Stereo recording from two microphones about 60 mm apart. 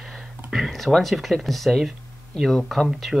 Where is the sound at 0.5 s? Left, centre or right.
Centre.